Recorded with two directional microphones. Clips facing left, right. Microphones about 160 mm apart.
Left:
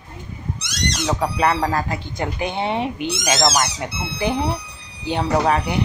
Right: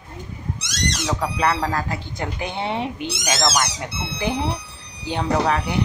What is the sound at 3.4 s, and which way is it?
Speech, 30° left (ahead or behind).